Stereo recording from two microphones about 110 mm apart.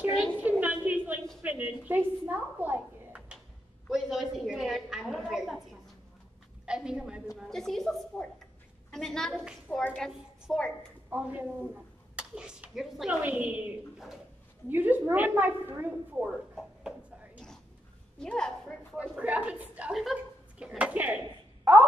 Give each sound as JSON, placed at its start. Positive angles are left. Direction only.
{"t": 0.4, "sound": "a sound", "side_deg": -15}
{"t": 1.4, "sound": "a woman's voice", "side_deg": -15}
{"t": 3.9, "sound": "a woman's voice", "side_deg": 0}
{"t": 6.6, "sound": "a woman's voice", "side_deg": -10}
{"t": 7.3, "sound": "a woman's voice", "side_deg": 5}
{"t": 11.1, "sound": "a woman's voice", "side_deg": -15}
{"t": 16.3, "sound": "speech", "side_deg": -5}
{"t": 18.2, "sound": "a woman's voice", "side_deg": 5}
{"t": 19.1, "sound": "a woman's voice", "side_deg": -15}